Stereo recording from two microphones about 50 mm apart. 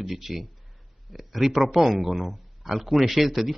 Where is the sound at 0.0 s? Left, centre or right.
Centre.